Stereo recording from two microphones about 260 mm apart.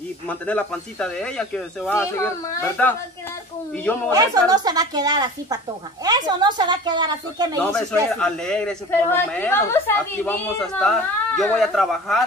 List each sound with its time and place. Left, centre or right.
0.3 s a man's voice: centre
4.1 s speech: centre
7.7 s a man's voice: centre